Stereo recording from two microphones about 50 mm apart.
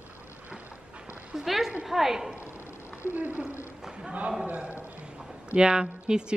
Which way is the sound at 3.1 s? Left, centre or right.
Right.